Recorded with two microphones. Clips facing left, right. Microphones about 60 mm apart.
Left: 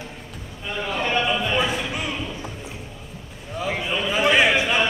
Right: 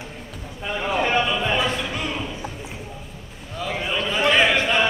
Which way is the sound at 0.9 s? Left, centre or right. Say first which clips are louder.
Right 3 dB; centre.